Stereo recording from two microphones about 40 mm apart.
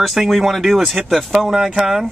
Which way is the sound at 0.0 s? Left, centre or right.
Centre.